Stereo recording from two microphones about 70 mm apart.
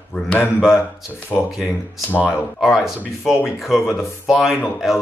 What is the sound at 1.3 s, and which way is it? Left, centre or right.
Speech, left.